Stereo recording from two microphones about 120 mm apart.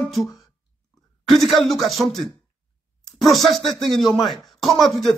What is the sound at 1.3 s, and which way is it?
A man's voice, centre (ahead or behind).